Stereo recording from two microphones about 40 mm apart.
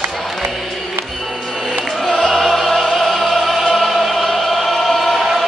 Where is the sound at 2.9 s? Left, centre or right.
Centre.